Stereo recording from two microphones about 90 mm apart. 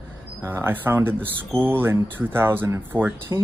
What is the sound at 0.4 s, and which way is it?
Speech, 25° right (ahead or behind).